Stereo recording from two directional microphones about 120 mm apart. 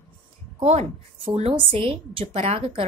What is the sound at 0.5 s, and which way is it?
A woman's voice, 50° right (ahead or behind).